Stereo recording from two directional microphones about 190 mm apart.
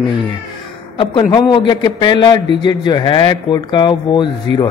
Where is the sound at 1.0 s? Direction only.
25° left (ahead or behind).